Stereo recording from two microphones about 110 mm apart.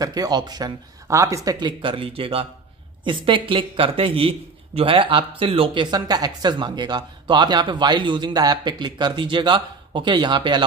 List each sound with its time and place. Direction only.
0.0 s speech: 35° right (ahead or behind)